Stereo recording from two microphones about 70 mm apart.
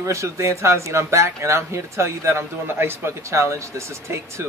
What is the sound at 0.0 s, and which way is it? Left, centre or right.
Speech, right.